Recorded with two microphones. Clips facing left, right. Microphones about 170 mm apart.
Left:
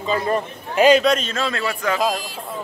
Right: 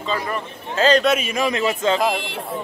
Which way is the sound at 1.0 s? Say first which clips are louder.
Even; 10° right (ahead or behind).